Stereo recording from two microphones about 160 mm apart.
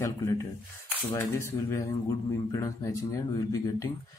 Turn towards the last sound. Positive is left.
turn(degrees=20)  # may be behind; listen again after turning